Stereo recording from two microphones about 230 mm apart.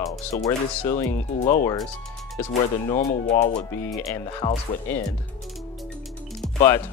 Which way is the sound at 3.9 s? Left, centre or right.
Centre.